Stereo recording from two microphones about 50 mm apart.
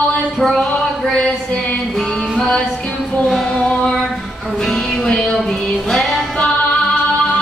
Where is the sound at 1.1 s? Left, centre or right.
Centre.